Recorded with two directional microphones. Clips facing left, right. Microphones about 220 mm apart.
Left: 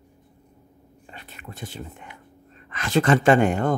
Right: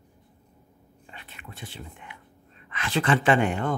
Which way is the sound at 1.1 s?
40° left (ahead or behind).